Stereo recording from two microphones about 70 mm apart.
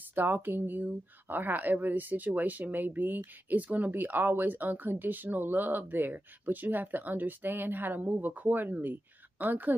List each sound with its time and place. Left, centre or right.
0.1 s speech: right